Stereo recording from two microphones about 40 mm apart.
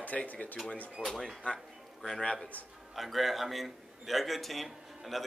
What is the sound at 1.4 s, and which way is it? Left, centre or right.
Speech, left.